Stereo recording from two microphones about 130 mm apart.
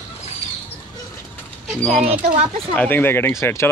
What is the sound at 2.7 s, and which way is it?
Speech, 15° left (ahead or behind).